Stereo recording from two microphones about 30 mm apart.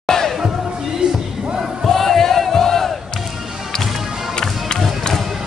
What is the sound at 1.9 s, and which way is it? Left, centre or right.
Battle cry, centre.